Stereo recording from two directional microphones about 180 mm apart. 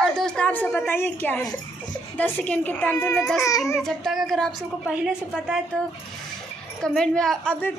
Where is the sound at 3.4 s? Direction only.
20° left (ahead or behind).